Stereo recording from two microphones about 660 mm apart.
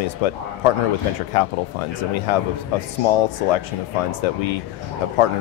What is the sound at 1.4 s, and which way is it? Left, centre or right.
Speech, left.